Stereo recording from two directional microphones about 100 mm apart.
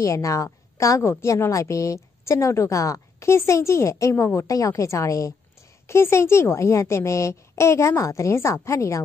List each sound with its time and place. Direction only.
0.0 s a woman's voice: 30° left (ahead or behind)